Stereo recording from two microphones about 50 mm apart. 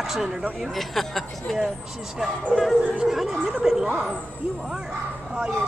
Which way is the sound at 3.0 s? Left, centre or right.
Centre.